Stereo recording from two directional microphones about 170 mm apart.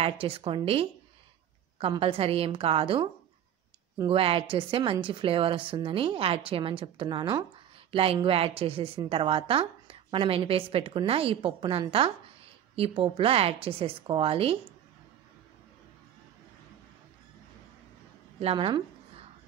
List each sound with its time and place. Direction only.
0.0 s a woman's voice: 35° right (ahead or behind)
4.1 s a woman's voice: 35° right (ahead or behind)
18.4 s a woman's voice: 30° right (ahead or behind)